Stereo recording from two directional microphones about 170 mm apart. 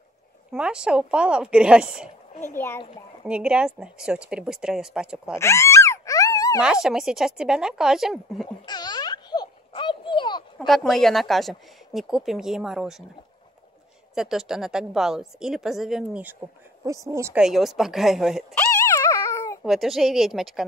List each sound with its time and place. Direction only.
0.5 s speech: 5° right (ahead or behind)
2.5 s a child's voice: 15° left (ahead or behind)
3.3 s speech: 5° right (ahead or behind)
5.3 s a sound: 15° left (ahead or behind)
6.6 s speech: 5° right (ahead or behind)
8.6 s a sound: 25° left (ahead or behind)
10.7 s speech: centre (ahead or behind)
14.1 s speech: 5° right (ahead or behind)
17.4 s speech: centre (ahead or behind)
18.6 s dog: 20° left (ahead or behind)
19.6 s speech: centre (ahead or behind)